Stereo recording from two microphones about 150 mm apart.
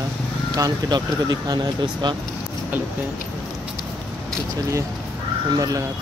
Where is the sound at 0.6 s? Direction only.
25° right (ahead or behind).